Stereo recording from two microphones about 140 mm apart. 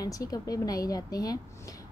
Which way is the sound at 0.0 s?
25° left (ahead or behind).